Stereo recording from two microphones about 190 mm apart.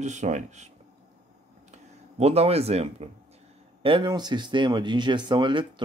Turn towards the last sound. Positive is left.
turn(degrees=-25)  # may be behind; listen again after turning